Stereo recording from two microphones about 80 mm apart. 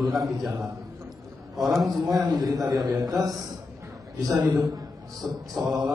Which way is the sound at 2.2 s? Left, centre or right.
Right.